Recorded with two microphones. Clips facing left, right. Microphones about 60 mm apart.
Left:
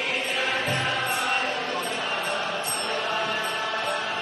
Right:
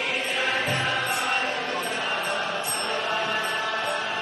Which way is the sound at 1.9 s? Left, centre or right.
Right.